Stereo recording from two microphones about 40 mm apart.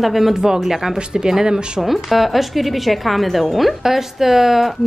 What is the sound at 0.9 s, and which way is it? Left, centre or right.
Speech, centre.